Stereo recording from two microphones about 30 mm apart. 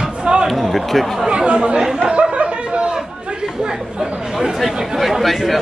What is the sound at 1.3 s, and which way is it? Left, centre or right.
Speech, right.